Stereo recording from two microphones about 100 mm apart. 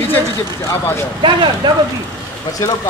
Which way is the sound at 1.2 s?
55° right (ahead or behind).